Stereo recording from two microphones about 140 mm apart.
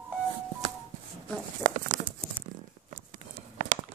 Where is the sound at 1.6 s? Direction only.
70° right (ahead or behind).